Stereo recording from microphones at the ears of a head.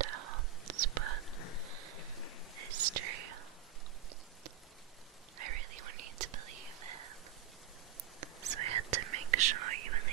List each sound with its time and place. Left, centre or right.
0.0 s whispering: right
2.5 s whispering: right
5.4 s whispering: right
8.2 s whispering: right